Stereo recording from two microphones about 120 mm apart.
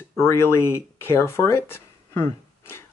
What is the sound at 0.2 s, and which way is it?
Speech, 20° left (ahead or behind).